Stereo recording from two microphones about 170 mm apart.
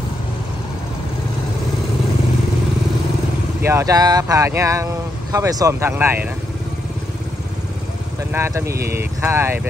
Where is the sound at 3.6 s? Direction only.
20° right (ahead or behind).